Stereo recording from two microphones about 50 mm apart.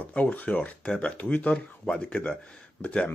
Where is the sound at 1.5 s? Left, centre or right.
Centre.